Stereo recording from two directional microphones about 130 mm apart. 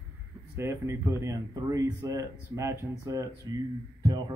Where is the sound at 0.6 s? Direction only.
20° right (ahead or behind).